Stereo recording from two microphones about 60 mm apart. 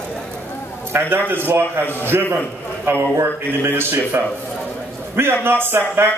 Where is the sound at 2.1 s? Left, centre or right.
Right.